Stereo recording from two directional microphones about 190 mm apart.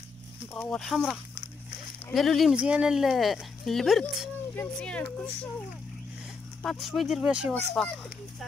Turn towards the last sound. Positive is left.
turn(degrees=5)  # may be behind; listen again after turning